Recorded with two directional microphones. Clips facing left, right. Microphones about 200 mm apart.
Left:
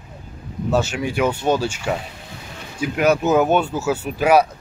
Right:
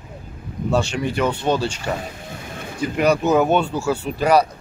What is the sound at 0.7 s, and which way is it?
Speech, 5° left (ahead or behind).